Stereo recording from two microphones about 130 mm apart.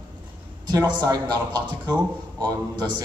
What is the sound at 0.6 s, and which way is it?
A man's voice, 30° right (ahead or behind).